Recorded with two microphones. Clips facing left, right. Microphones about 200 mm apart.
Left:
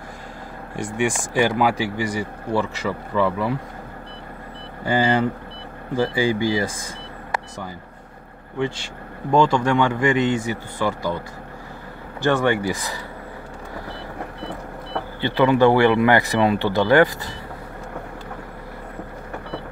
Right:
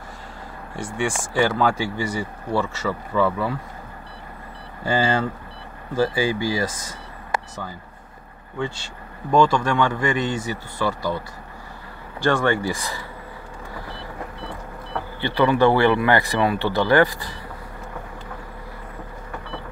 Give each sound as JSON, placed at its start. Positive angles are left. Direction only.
{"t": 0.9, "sound": "speech", "side_deg": 15}
{"t": 4.8, "sound": "speech", "side_deg": 20}
{"t": 9.3, "sound": "speech", "side_deg": 20}
{"t": 12.3, "sound": "speech", "side_deg": 15}
{"t": 15.1, "sound": "speech", "side_deg": 15}